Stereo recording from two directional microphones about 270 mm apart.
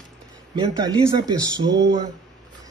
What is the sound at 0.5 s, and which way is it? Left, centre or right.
Speech, centre.